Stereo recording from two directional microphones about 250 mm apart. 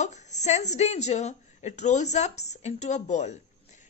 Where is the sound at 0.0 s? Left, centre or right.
Left.